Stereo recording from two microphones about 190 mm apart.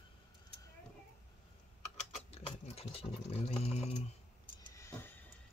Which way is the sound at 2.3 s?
30° left (ahead or behind).